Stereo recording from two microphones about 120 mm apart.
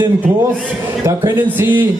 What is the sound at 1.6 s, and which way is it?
Speech, 20° right (ahead or behind).